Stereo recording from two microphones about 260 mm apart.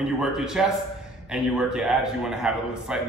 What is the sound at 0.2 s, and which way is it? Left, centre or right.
A man's voice, centre.